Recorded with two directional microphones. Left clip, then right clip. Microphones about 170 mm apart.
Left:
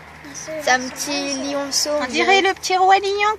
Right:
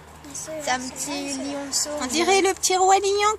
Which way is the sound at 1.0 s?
60° left (ahead or behind).